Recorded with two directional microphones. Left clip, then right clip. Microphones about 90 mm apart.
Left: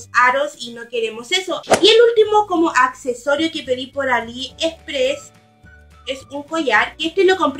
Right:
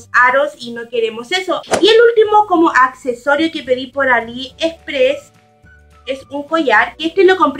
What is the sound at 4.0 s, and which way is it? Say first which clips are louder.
Speech: right 5 dB; 25° left (ahead or behind).